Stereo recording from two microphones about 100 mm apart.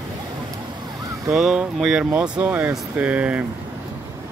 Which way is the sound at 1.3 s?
5° right (ahead or behind).